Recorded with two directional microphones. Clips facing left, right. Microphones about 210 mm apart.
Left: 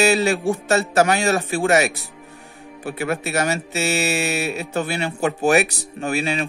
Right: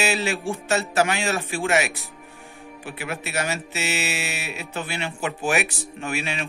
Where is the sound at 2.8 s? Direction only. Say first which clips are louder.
Left 8 dB; 45° left (ahead or behind).